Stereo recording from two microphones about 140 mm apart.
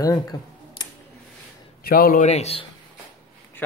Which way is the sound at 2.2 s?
50° left (ahead or behind).